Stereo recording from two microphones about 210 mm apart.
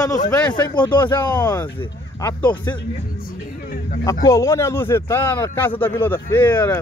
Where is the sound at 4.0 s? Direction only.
15° left (ahead or behind).